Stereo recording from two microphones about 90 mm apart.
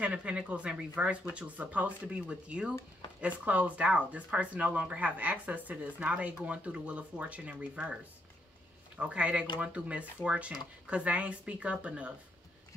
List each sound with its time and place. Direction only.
0.0 s speech: 15° right (ahead or behind)